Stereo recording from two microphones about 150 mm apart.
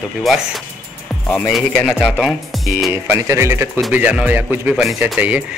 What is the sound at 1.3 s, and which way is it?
Speech, centre (ahead or behind).